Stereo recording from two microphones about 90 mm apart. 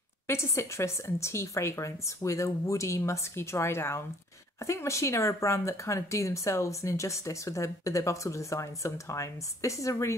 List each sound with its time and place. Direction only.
0.3 s speech: 30° left (ahead or behind)